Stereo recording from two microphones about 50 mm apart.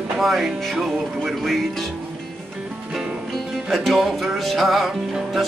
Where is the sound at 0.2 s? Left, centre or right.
Centre.